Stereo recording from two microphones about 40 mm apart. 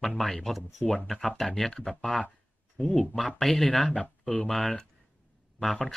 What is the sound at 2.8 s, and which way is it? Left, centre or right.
Speech, left.